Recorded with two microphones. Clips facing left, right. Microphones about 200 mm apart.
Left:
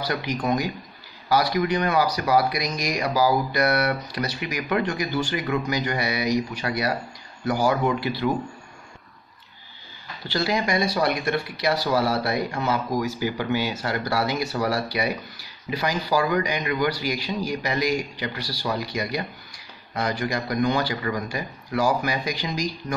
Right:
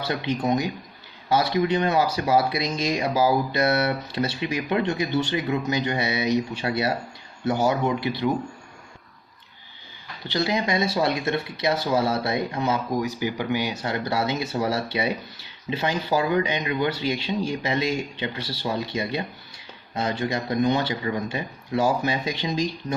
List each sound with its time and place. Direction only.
0.0 s speech: 25° right (ahead or behind)
10.2 s speech: 20° right (ahead or behind)